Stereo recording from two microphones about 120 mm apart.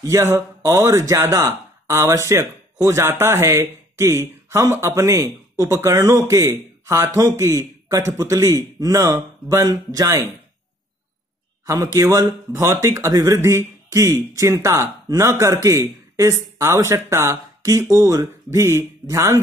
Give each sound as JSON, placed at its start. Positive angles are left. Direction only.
{"t": 0.0, "sound": "speech", "side_deg": -25}
{"t": 11.6, "sound": "speech", "side_deg": -30}